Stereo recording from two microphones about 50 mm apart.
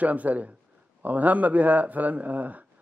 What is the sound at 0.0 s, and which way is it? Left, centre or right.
Speech, right.